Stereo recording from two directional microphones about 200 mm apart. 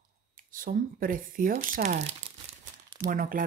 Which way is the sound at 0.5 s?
45° right (ahead or behind).